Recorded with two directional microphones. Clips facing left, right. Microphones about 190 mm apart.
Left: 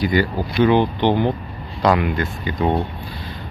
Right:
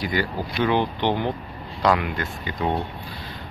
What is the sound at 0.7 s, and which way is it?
Speech, 20° left (ahead or behind).